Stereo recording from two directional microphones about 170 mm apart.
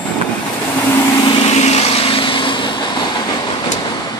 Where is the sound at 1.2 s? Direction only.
30° left (ahead or behind).